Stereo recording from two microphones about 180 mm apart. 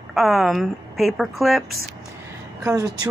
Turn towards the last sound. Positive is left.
turn(degrees=-20)  # may be behind; listen again after turning